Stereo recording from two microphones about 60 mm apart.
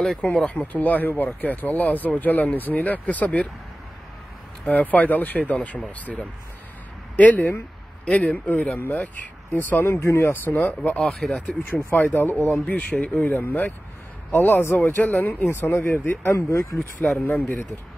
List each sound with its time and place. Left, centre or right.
0.0 s speech: centre
4.6 s speech: left
11.0 s speech: centre
11.6 s speech: left
16.3 s speech: left
17.2 s speech: left